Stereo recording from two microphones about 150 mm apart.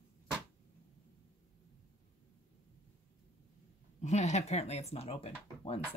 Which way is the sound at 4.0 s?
50° left (ahead or behind).